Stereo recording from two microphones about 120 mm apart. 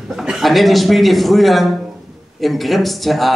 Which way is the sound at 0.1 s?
5° right (ahead or behind).